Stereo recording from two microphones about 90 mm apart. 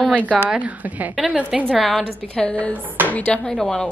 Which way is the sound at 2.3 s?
10° left (ahead or behind).